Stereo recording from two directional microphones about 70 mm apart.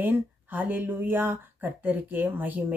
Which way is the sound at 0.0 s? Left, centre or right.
Right.